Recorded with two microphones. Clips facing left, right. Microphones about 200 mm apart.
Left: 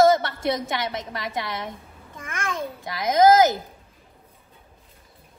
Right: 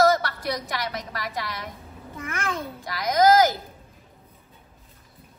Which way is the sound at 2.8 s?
25° left (ahead or behind).